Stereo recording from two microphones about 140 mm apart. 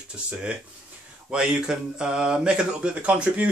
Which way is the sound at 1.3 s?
5° right (ahead or behind).